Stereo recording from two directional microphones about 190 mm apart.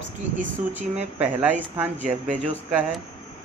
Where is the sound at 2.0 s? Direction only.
40° right (ahead or behind).